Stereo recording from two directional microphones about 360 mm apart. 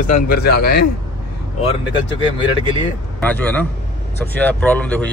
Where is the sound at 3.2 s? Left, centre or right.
Centre.